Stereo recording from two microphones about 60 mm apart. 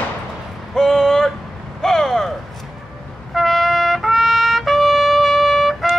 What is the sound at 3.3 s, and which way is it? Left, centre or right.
Trumpet, centre.